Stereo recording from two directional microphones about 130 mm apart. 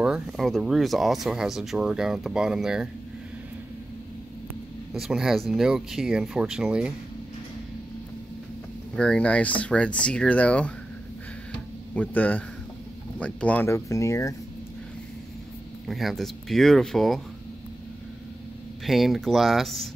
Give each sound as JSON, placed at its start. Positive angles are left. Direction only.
{"t": 0.0, "sound": "speech", "side_deg": 0}
{"t": 4.9, "sound": "speech", "side_deg": 0}
{"t": 8.9, "sound": "speech", "side_deg": 10}
{"t": 11.9, "sound": "speech", "side_deg": 10}
{"t": 13.7, "sound": "speech", "side_deg": 25}
{"t": 15.9, "sound": "speech", "side_deg": 0}
{"t": 18.9, "sound": "speech", "side_deg": 0}